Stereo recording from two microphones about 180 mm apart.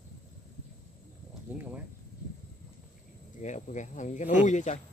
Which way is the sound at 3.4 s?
40° left (ahead or behind).